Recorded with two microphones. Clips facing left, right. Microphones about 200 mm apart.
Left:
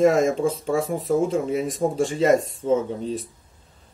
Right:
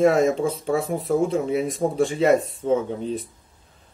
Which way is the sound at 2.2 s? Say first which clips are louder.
Even; 40° left (ahead or behind).